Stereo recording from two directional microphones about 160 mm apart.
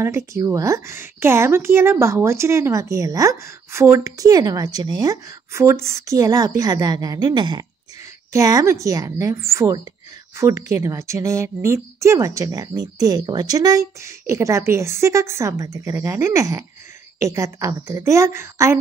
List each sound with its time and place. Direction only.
0.0 s a woman's voice: 20° right (ahead or behind)